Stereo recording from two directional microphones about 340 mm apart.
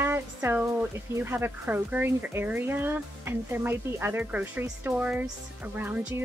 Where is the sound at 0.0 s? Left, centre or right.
Centre.